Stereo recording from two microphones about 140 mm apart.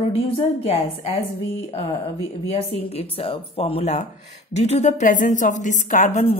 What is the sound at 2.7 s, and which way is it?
A woman's voice, 45° left (ahead or behind).